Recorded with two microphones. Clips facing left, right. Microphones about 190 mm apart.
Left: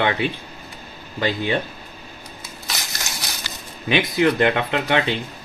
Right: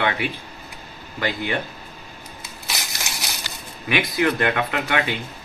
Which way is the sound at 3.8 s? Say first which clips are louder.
Left 3 dB; 25° left (ahead or behind).